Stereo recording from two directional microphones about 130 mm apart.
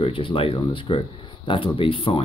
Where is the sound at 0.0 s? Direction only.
45° left (ahead or behind).